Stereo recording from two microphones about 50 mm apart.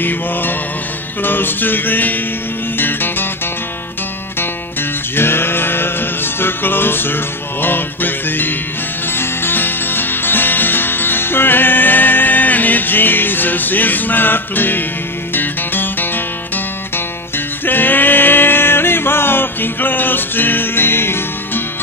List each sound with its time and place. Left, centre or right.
0.0 s music: left
5.1 s music: left
17.6 s a sound: left